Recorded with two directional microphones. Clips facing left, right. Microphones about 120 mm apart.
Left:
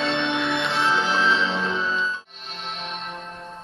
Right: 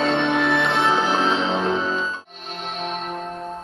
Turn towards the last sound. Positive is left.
turn(degrees=-45)  # may be behind; listen again after turning